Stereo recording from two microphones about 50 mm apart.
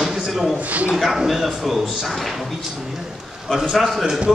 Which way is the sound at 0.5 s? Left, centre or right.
Right.